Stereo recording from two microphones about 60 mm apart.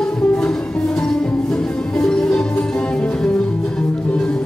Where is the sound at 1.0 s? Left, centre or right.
Centre.